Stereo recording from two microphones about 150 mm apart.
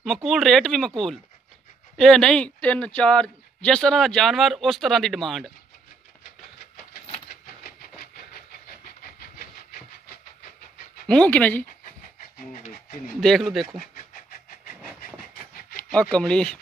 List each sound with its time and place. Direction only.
0.0 s speech: centre (ahead or behind)
7.2 s train: 80° left
11.1 s speech: 10° left (ahead or behind)
13.2 s speech: centre (ahead or behind)
14.8 s train: 10° right (ahead or behind)
15.9 s speech: 5° left (ahead or behind)